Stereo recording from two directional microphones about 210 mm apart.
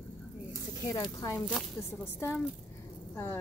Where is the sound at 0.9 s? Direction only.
15° left (ahead or behind).